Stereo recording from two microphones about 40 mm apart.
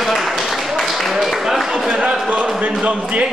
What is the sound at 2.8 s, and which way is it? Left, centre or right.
Speech, right.